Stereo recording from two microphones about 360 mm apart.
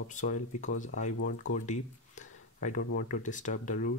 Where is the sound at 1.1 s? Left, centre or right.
Left.